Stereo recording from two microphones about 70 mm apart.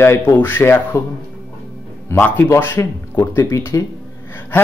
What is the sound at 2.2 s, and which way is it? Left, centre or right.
Speech, left.